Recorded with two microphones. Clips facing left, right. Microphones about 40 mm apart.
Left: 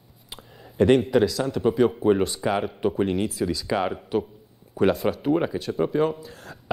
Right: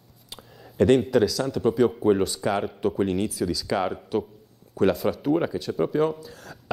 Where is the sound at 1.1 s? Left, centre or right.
Centre.